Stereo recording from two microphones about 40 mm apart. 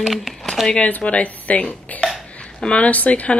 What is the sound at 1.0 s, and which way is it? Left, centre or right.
A woman's voice, left.